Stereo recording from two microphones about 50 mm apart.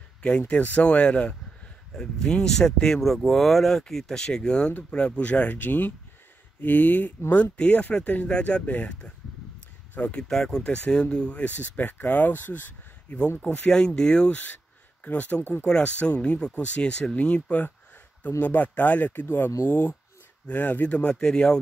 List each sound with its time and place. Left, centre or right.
0.2 s speech: left
2.0 s speech: centre
5.6 s speech: left
10.2 s speech: centre
10.6 s speech: centre
11.4 s speech: left
13.4 s speech: left
13.7 s speech: centre
15.0 s speech: left
19.2 s speech: left
20.8 s speech: left